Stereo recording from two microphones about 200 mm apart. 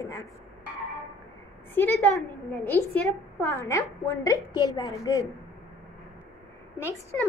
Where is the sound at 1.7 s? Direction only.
10° left (ahead or behind).